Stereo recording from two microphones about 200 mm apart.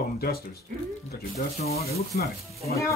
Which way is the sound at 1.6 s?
30° left (ahead or behind).